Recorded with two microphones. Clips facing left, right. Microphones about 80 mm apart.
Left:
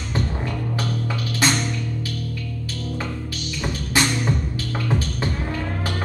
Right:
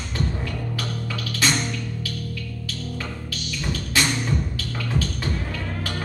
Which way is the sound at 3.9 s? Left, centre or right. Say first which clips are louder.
Left 3 dB; left.